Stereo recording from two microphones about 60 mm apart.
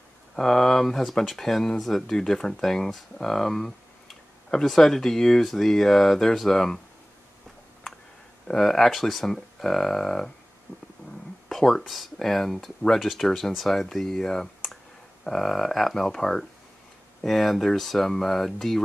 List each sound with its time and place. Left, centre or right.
0.4 s speech: centre
8.5 s speech: centre
10.7 s stomach rumble: right
11.4 s speech: centre